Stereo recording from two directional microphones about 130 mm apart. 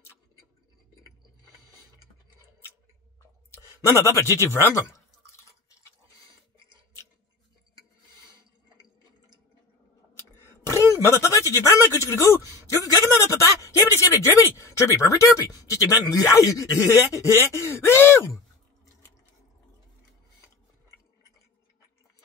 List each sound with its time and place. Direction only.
3.5 s a sound: 20° left (ahead or behind)
4.4 s speech: 20° left (ahead or behind)
10.4 s speech: 20° left (ahead or behind)